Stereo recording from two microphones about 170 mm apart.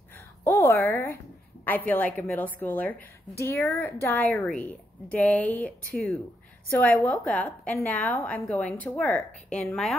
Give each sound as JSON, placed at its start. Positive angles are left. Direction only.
{"t": 0.4, "sound": "a woman's voice", "side_deg": 15}